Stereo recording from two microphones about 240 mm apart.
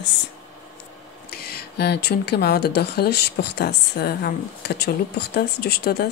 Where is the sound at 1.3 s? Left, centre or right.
Left.